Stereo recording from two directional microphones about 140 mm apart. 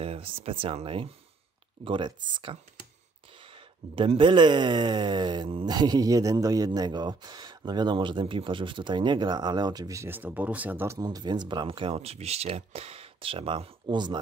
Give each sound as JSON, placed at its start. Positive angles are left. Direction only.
{"t": 0.0, "sound": "speech", "side_deg": -45}
{"t": 11.0, "sound": "speech", "side_deg": -30}